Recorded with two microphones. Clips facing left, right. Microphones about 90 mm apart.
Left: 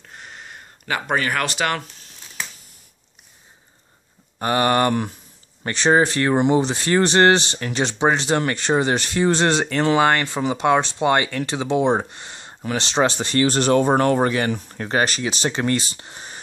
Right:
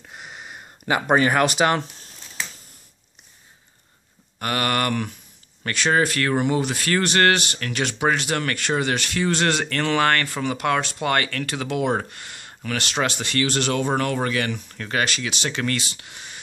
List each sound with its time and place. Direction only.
0.1 s a sound: 10° right (ahead or behind)
4.4 s speech: 25° left (ahead or behind)
9.7 s speech: 15° left (ahead or behind); by 16.3 s 35° left (ahead or behind)